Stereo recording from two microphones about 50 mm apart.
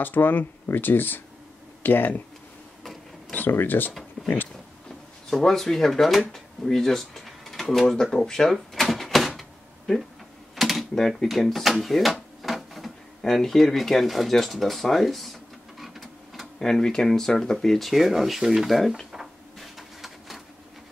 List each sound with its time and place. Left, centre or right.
0.0 s speech: left
3.3 s speech: left
5.3 s speech: centre
9.4 s door: centre
10.5 s typing: centre
11.2 s a sound: centre
13.2 s speech: centre
15.8 s printer: centre
16.5 s speech: centre
19.1 s printer: centre